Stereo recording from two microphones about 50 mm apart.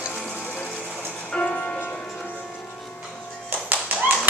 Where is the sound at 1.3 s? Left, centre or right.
Left.